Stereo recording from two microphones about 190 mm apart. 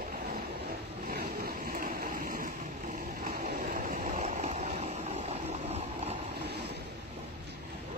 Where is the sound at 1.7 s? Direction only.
45° right (ahead or behind).